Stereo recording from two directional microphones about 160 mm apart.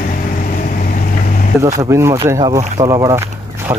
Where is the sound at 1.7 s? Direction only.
20° right (ahead or behind).